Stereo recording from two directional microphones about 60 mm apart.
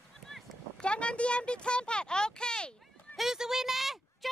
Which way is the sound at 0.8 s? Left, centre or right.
Centre.